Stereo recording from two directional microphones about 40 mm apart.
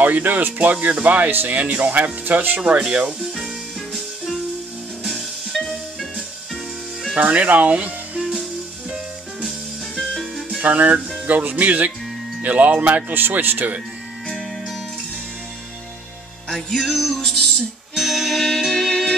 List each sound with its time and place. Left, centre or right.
0.0 s speech: right
2.9 s speech: right
3.2 s music: centre
5.5 s music: centre
7.2 s speech: right
9.4 s music: centre
10.6 s speech: right
13.1 s speech: right
16.4 s music: centre
17.9 s music: centre